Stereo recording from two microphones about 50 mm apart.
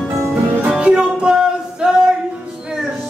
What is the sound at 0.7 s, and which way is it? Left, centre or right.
Music, right.